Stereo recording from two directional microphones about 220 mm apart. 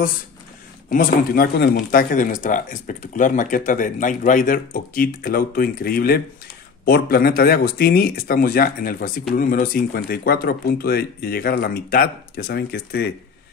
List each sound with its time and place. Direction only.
0.8 s speech: 40° left (ahead or behind)